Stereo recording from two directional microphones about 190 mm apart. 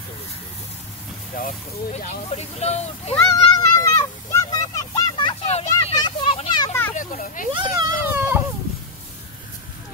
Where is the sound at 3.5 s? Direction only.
15° left (ahead or behind).